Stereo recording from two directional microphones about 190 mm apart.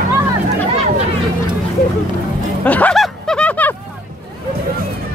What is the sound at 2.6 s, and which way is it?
Music, 10° left (ahead or behind).